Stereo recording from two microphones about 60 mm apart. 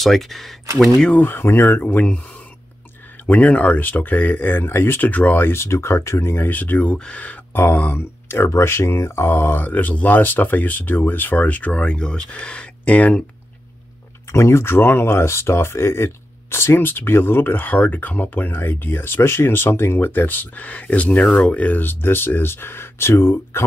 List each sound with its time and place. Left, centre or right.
0.0 s speech: centre
1.1 s speech: left
3.3 s speech: left
7.5 s speech: left
8.3 s speech: left
14.3 s speech: left